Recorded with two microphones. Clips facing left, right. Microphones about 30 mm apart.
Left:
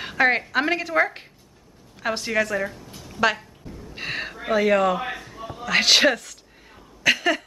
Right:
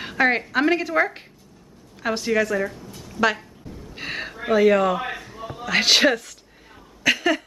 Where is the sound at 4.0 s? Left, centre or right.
Centre.